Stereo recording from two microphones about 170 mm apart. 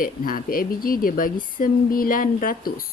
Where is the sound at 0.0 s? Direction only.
55° left (ahead or behind).